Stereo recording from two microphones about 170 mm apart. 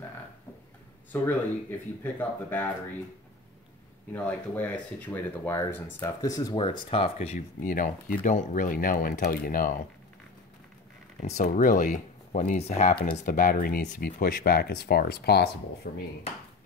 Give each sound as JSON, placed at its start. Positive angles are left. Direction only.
{"t": 1.1, "sound": "speech", "side_deg": 10}
{"t": 4.1, "sound": "speech", "side_deg": 10}
{"t": 11.1, "sound": "speech", "side_deg": 45}